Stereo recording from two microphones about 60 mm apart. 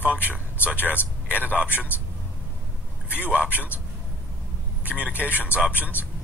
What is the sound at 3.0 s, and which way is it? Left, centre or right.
Speech, left.